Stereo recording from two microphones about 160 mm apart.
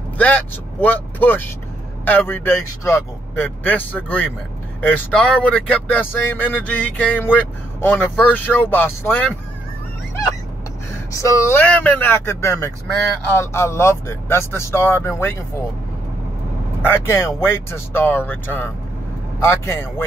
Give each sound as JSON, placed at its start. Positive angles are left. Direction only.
{"t": 0.2, "sound": "speech", "side_deg": 10}
{"t": 11.1, "sound": "speech", "side_deg": 20}
{"t": 16.8, "sound": "speech", "side_deg": 15}